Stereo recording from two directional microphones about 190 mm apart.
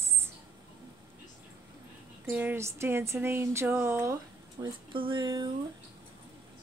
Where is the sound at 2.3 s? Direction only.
10° right (ahead or behind).